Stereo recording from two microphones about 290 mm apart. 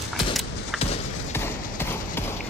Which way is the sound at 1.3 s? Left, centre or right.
Centre.